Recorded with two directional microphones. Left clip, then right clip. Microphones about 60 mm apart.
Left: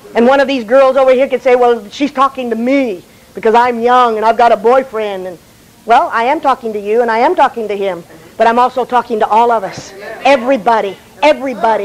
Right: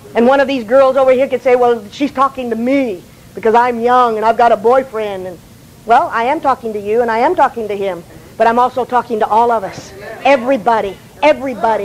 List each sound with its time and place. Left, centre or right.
0.1 s a woman's voice: left